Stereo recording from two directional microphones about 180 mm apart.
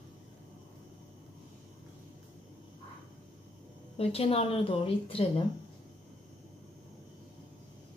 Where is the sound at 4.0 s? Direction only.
35° left (ahead or behind).